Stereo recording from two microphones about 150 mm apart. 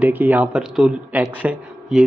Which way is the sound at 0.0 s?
10° right (ahead or behind).